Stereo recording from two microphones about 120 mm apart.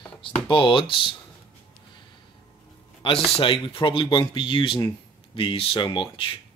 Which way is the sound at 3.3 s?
50° left (ahead or behind).